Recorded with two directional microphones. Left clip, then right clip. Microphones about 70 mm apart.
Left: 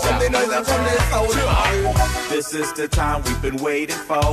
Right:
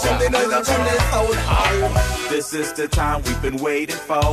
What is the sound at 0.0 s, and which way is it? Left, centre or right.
Music, right.